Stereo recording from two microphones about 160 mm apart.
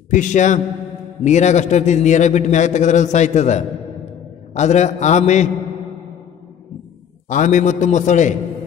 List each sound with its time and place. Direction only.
0.1 s a man's voice: 50° left (ahead or behind)
7.2 s a man's voice: 50° left (ahead or behind)